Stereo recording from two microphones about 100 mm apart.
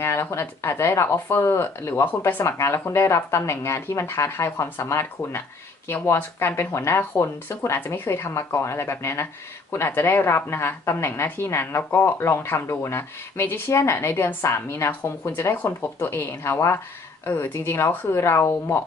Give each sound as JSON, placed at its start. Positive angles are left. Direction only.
{"t": 0.0, "sound": "speech", "side_deg": 25}